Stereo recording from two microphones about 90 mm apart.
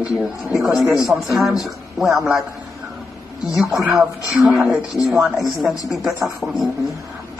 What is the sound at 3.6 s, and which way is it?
Speech, centre (ahead or behind).